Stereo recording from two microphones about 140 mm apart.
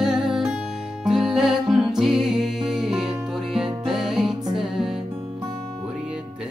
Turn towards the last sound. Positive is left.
turn(degrees=0)  # may be behind; listen again after turning